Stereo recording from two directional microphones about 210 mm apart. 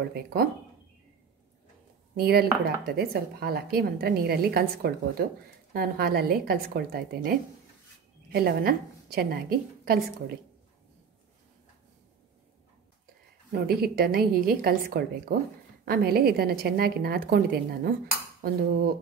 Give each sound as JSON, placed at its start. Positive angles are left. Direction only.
{"t": 0.1, "sound": "speech", "side_deg": -45}
{"t": 2.1, "sound": "speech", "side_deg": -50}
{"t": 13.5, "sound": "speech", "side_deg": -45}